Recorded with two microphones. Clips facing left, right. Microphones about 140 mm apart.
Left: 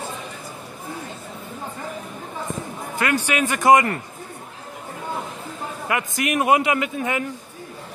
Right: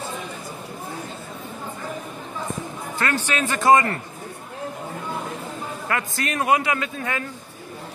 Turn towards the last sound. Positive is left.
turn(degrees=20)  # may be behind; listen again after turning